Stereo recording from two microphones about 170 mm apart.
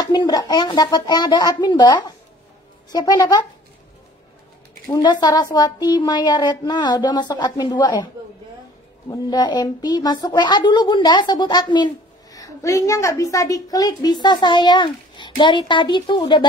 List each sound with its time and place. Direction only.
0.1 s a woman's voice: 25° left (ahead or behind)
4.8 s a woman's voice: 20° left (ahead or behind)
9.1 s a woman's voice: 25° left (ahead or behind)